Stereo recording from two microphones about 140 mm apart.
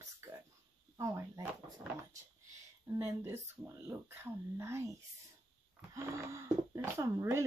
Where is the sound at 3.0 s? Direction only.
20° right (ahead or behind).